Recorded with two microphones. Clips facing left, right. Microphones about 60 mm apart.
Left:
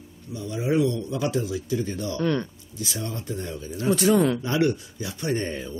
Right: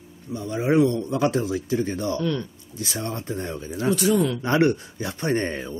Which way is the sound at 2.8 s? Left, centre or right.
Right.